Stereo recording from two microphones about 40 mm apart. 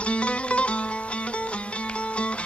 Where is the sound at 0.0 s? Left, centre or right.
Left.